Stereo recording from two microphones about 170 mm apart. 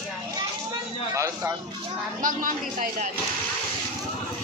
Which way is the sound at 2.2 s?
50° right (ahead or behind).